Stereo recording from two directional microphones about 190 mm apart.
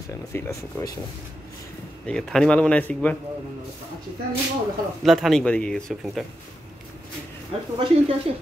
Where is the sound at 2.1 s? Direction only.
5° left (ahead or behind).